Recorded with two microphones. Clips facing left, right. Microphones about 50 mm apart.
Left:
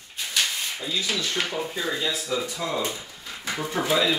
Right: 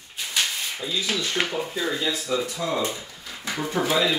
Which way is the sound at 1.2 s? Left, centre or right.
Right.